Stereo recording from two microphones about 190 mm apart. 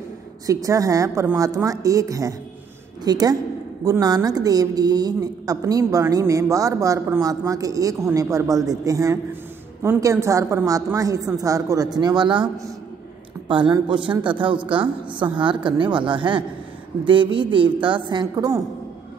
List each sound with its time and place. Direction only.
0.5 s a woman's voice: 15° right (ahead or behind)